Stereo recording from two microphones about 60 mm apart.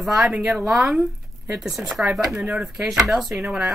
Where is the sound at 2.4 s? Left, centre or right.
Centre.